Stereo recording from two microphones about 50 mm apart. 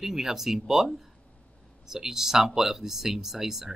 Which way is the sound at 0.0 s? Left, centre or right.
Centre.